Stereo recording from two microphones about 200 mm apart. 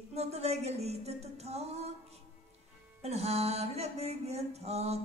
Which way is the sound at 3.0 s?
30° right (ahead or behind).